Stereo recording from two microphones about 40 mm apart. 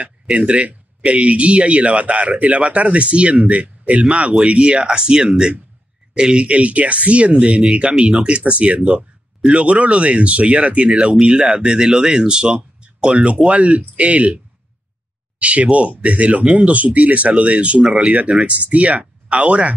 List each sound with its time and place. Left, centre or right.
0.0 s speech: right